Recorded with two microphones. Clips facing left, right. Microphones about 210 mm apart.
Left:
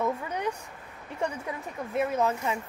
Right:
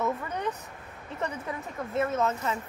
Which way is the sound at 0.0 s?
10° left (ahead or behind).